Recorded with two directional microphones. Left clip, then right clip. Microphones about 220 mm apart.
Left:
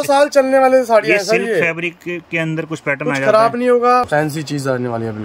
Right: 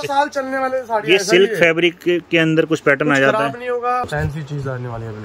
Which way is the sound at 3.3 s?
45° left (ahead or behind).